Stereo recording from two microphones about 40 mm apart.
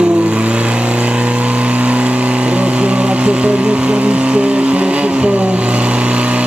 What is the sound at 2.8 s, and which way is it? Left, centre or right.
Vehicle, right.